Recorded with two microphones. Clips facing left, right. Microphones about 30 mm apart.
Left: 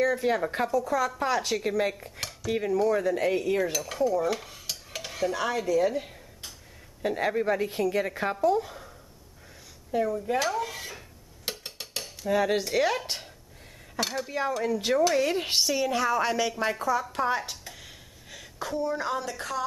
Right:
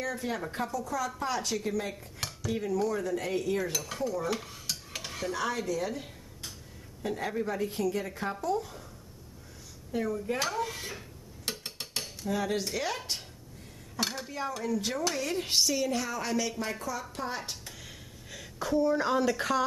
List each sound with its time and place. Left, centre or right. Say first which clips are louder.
0.0 s speech: left 9 dB; left
3.7 s stir: left 6 dB; centre
5.3 s speech: left 4 dB; centre
5.9 s a sound: left 8 dB; centre
7.0 s a woman's voice: left 6 dB; left
7.9 s a woman's voice: left 6 dB; left
9.9 s speech: left 5 dB; centre
10.4 s dishes: left 3 dB; centre
11.5 s a sound: even; centre
12.3 s a woman's voice: left 6 dB; left
13.9 s dishes: left 3 dB; centre
14.6 s a woman's voice: left 7 dB; left
17.1 s speech: left 8 dB; centre
17.5 s a sound: left 1 dB; centre